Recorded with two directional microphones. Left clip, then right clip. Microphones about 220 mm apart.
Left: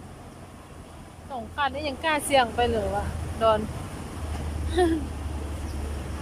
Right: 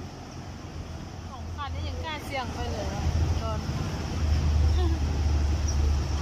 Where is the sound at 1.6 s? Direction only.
45° left (ahead or behind).